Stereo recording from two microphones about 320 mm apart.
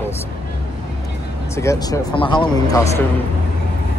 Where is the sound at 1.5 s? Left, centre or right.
Centre.